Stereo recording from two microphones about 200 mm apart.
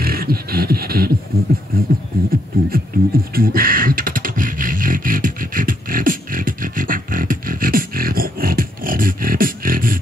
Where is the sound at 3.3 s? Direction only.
45° right (ahead or behind).